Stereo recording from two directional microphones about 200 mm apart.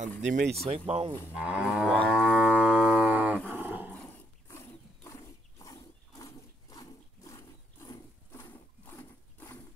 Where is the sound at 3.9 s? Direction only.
10° left (ahead or behind).